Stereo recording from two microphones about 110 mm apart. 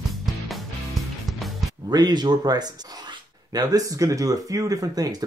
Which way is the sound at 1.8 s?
40° right (ahead or behind).